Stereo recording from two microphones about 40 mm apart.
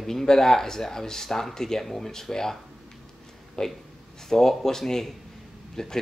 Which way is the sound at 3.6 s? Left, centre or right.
Centre.